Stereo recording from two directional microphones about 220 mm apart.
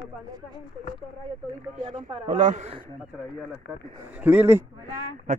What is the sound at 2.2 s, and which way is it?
Speech, 35° right (ahead or behind).